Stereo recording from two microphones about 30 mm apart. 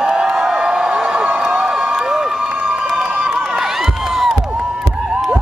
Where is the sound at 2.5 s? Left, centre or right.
Right.